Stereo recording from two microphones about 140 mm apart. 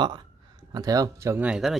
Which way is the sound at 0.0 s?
30° right (ahead or behind).